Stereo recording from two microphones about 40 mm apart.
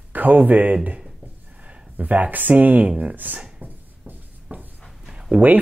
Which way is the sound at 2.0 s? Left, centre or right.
Right.